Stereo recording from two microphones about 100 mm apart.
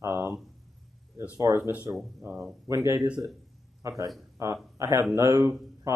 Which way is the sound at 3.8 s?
30° right (ahead or behind).